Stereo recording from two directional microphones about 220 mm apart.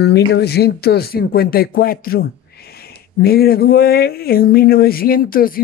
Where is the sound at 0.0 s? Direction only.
50° left (ahead or behind).